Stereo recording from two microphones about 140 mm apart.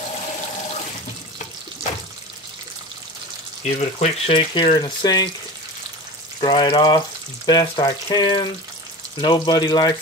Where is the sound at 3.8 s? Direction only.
50° left (ahead or behind).